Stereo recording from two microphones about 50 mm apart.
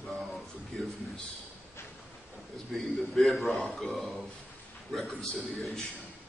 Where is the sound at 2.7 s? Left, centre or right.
Centre.